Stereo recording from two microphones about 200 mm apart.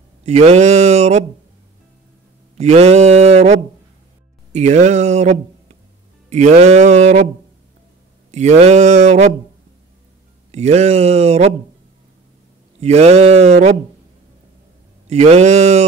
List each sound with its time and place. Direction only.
0.2 s mantra: 35° right (ahead or behind)
2.5 s mantra: 30° right (ahead or behind)
4.5 s speech: 35° right (ahead or behind)
6.3 s mantra: 35° right (ahead or behind)
8.3 s mantra: 35° right (ahead or behind)
10.5 s mantra: 35° right (ahead or behind)
12.8 s mantra: 35° right (ahead or behind)
15.0 s mantra: 35° right (ahead or behind)